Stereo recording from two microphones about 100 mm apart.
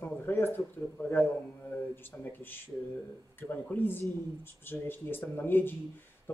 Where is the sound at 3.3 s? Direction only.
20° left (ahead or behind).